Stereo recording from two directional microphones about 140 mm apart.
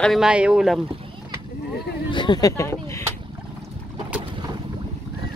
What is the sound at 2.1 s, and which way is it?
Speech, 35° left (ahead or behind).